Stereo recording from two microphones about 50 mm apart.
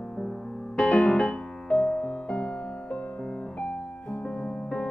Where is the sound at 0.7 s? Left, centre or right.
Left.